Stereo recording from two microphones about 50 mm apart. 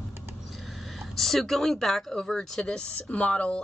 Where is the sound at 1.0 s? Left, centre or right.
Centre.